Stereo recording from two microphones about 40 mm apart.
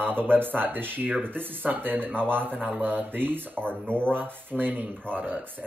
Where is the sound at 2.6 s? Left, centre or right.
Right.